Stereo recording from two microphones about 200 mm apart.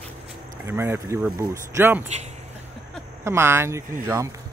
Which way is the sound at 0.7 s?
10° right (ahead or behind).